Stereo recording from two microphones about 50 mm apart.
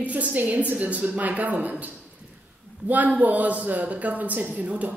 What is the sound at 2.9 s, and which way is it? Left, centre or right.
A woman's voice, right.